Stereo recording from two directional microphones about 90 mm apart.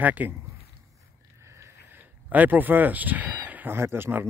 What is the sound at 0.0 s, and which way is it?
Speech, 20° right (ahead or behind).